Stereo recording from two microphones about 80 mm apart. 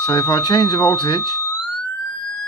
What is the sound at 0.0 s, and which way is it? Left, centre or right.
Speech, left.